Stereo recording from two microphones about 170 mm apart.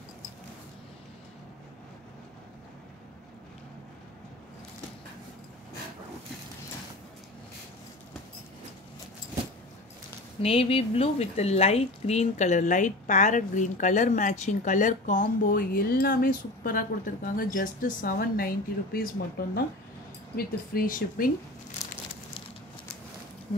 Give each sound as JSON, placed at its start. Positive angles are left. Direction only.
{"t": 10.4, "sound": "speech", "side_deg": 35}